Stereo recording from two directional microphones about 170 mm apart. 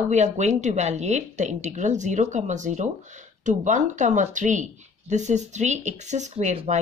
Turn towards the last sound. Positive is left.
turn(degrees=-40)  # may be behind; listen again after turning